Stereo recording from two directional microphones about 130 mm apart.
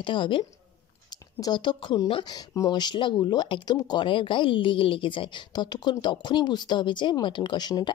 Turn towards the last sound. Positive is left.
turn(degrees=35)  # may be behind; listen again after turning